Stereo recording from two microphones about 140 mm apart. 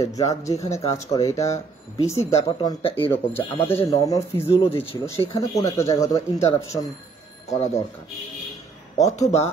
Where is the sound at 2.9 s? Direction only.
15° left (ahead or behind).